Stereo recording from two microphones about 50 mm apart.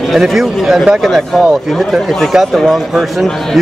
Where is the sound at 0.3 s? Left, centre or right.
Centre.